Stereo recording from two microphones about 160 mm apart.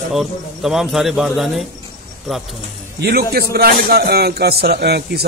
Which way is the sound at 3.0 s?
85° right.